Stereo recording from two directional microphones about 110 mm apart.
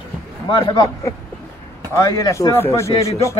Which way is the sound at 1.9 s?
25° left (ahead or behind).